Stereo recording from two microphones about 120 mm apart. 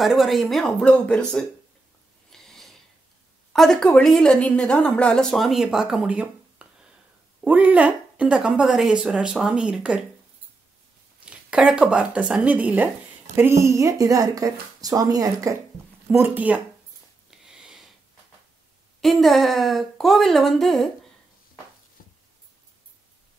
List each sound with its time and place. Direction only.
0.0 s a woman's voice: centre (ahead or behind)
2.3 s a sound: 5° left (ahead or behind)
3.5 s a woman's voice: 5° left (ahead or behind)
11.2 s a woman's voice: 5° right (ahead or behind); by 15.5 s 30° right (ahead or behind)
16.1 s a woman's voice: 15° right (ahead or behind)
17.3 s a sound: 5° right (ahead or behind)
18.9 s a woman's voice: centre (ahead or behind)